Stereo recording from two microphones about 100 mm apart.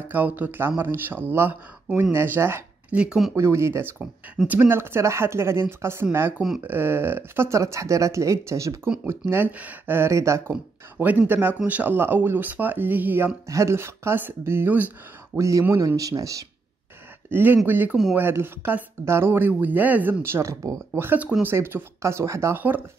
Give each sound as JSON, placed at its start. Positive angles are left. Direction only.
{"t": 0.1, "sound": "speech", "side_deg": -15}
{"t": 2.9, "sound": "speech", "side_deg": -10}
{"t": 3.3, "sound": "speech", "side_deg": -30}
{"t": 13.5, "sound": "speech", "side_deg": -30}
{"t": 15.3, "sound": "speech", "side_deg": -30}
{"t": 17.3, "sound": "speech", "side_deg": -20}